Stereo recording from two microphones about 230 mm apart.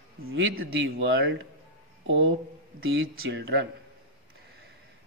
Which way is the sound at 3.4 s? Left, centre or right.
Right.